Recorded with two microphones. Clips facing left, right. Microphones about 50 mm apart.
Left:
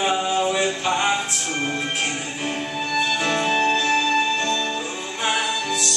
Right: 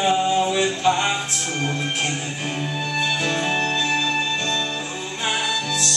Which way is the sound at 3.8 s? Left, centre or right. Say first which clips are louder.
Left 2 dB; centre.